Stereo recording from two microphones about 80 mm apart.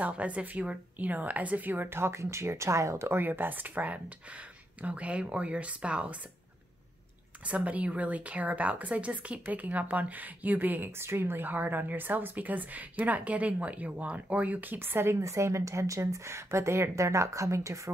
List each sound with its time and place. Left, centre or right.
0.0 s speech: centre
7.4 s speech: centre; by 17.9 s right